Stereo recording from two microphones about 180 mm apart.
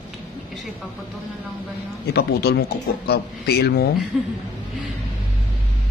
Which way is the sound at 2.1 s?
60° left (ahead or behind).